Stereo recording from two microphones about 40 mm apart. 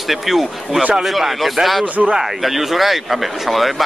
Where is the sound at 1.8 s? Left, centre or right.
Right.